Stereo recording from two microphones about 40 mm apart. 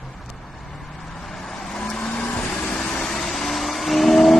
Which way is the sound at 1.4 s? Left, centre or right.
Centre.